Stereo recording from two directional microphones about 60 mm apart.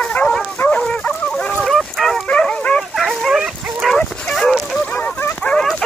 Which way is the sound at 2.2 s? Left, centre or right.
Centre.